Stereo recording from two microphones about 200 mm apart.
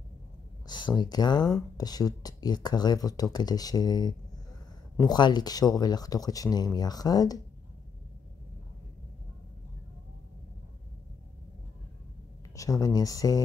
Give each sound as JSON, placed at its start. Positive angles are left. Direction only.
{"t": 0.7, "sound": "speech", "side_deg": 20}
{"t": 12.5, "sound": "speech", "side_deg": 15}